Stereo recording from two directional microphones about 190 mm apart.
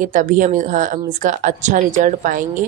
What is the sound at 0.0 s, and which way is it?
A woman's voice, 45° right (ahead or behind).